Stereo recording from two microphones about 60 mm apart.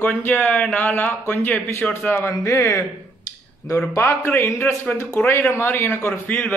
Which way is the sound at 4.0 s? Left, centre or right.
Left.